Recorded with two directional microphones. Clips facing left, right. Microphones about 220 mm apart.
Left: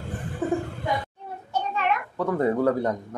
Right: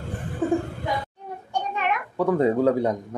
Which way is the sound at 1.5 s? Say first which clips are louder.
Left 1 dB; 15° right (ahead or behind).